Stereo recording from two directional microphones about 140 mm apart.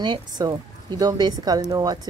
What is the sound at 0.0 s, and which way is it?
Speech, 30° right (ahead or behind).